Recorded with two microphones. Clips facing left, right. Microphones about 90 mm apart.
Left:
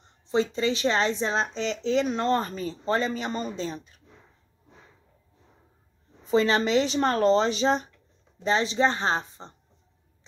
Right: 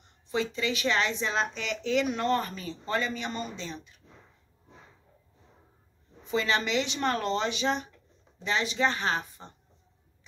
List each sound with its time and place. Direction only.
0.0 s a woman's voice: 30° left (ahead or behind)
6.2 s a woman's voice: 40° left (ahead or behind)